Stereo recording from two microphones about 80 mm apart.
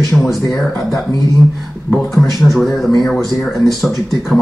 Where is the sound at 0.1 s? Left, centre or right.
Centre.